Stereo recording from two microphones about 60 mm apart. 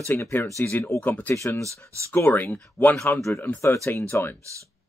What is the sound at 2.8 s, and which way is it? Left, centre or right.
Speech, left.